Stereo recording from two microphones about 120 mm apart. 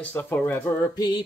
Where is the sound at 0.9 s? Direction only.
35° left (ahead or behind).